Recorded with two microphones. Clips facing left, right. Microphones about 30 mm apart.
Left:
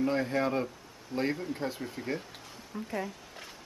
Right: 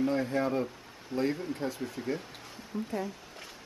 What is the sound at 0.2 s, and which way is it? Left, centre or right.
Speech, centre.